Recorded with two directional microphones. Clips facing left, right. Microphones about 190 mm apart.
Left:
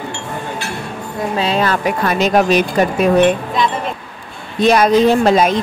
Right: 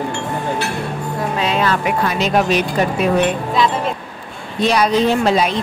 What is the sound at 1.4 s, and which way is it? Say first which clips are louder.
Speech: left 2 dB; 35° left (ahead or behind).